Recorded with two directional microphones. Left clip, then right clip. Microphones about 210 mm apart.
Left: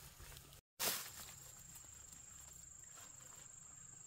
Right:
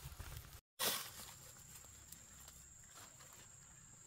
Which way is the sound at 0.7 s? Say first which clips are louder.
Right 2 dB; 10° left (ahead or behind).